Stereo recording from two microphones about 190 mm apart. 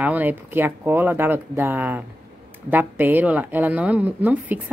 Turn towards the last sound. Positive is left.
turn(degrees=-10)  # may be behind; listen again after turning